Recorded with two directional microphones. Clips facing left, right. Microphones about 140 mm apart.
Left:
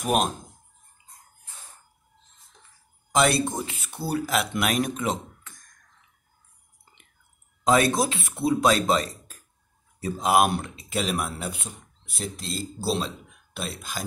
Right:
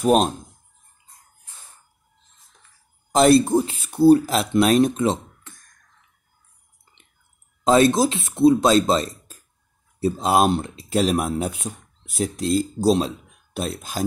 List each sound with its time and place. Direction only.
0.0 s speech: 35° right (ahead or behind)
3.2 s speech: 30° right (ahead or behind)
7.6 s speech: 25° right (ahead or behind)
10.0 s speech: 25° right (ahead or behind); by 14.0 s 45° right (ahead or behind)